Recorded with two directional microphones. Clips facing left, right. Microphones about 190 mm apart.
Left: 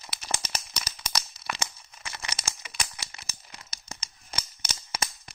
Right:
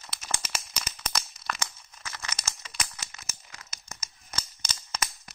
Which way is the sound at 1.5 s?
10° left (ahead or behind).